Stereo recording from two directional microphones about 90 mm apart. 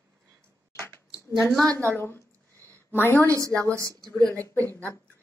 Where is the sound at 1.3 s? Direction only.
15° left (ahead or behind).